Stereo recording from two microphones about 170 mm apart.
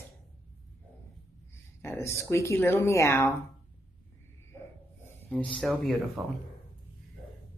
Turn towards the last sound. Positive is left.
turn(degrees=0)  # may be behind; listen again after turning